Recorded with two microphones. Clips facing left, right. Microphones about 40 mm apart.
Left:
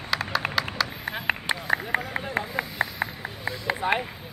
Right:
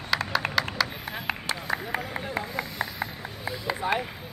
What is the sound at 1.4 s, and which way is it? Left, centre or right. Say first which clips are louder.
Run: left 4 dB; left.